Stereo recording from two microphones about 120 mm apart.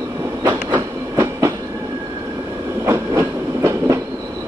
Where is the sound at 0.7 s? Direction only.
20° right (ahead or behind).